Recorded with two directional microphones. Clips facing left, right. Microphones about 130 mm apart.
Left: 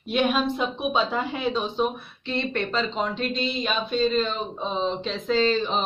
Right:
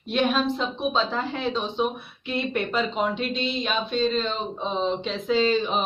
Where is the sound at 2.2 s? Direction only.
5° right (ahead or behind).